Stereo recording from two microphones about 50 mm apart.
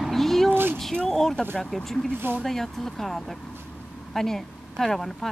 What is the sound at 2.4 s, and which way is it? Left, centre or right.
Speech, centre.